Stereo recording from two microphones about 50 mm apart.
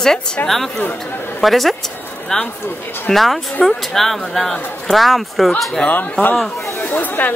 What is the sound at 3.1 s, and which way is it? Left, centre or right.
Speech, centre.